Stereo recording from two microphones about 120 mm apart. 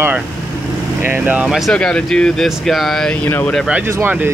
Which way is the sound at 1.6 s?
5° left (ahead or behind).